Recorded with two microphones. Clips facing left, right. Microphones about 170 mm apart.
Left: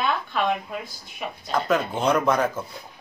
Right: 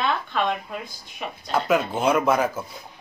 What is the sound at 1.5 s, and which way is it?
A man's voice, 5° right (ahead or behind).